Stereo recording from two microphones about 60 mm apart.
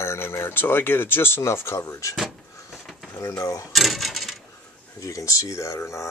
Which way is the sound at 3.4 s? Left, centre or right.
Left.